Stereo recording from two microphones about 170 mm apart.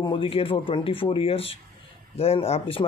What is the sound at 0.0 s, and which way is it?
Speech, 30° left (ahead or behind).